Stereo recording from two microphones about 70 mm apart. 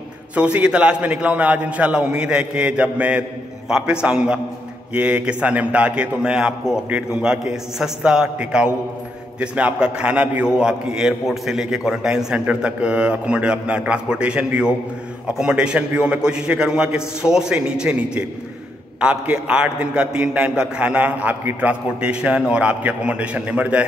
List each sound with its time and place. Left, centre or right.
0.3 s a man's voice: centre